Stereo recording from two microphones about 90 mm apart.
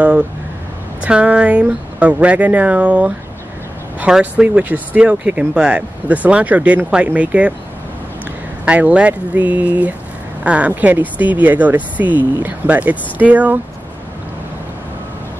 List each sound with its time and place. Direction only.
1.0 s speech: 10° right (ahead or behind)
8.6 s speech: 15° right (ahead or behind)